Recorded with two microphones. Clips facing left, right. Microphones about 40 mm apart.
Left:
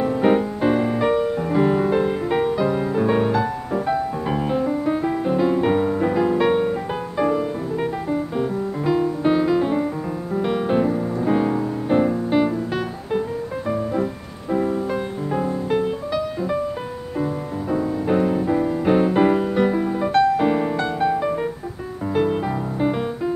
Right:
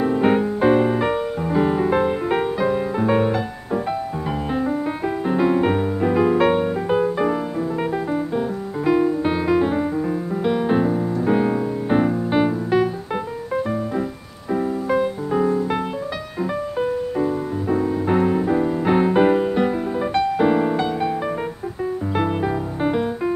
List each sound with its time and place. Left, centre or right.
0.0 s music: centre
1.9 s music: centre
9.2 s music: centre
10.4 s music: centre
15.4 s music: right
17.2 s music: centre
22.1 s music: centre